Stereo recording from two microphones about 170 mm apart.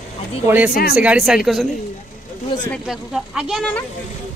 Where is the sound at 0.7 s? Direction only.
60° left (ahead or behind).